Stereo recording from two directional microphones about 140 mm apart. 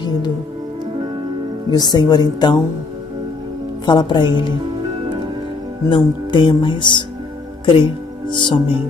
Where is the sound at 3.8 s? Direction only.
30° left (ahead or behind).